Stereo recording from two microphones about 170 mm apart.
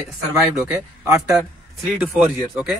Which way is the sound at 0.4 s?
15° right (ahead or behind).